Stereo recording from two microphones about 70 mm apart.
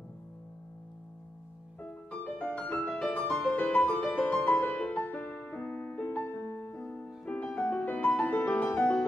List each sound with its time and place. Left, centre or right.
1.8 s music: centre
7.2 s music: centre
8.7 s music: centre